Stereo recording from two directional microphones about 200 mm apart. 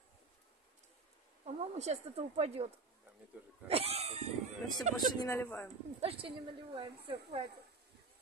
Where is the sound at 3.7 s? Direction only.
30° right (ahead or behind).